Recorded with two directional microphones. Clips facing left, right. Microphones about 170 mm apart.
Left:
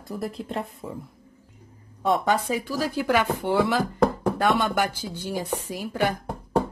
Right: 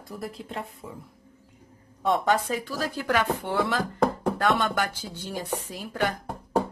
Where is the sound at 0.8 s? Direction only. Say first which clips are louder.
Left 5 dB; 35° left (ahead or behind).